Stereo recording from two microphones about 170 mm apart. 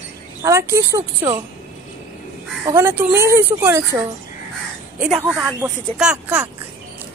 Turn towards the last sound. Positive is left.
turn(degrees=-5)  # may be behind; listen again after turning